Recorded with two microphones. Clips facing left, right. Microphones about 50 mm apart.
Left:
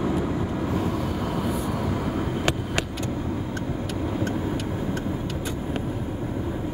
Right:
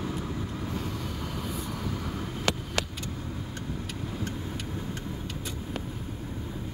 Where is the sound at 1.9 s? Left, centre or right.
Left.